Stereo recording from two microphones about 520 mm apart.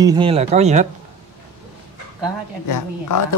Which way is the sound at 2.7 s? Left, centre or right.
Left.